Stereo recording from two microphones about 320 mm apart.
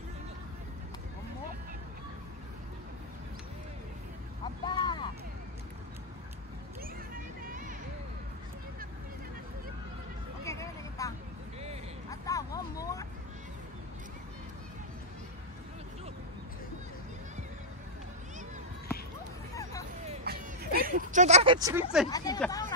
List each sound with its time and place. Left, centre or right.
4.6 s a sound: centre
7.4 s vehicle: right
10.4 s vehicle: centre
19.5 s hubbub: centre
20.1 s a sound: right; by 21.8 s centre
22.1 s speech: centre